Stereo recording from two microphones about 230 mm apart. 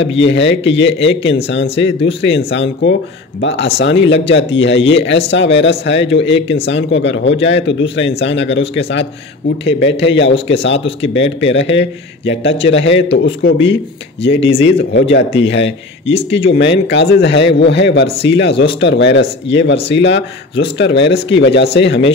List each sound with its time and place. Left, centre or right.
0.1 s speech: left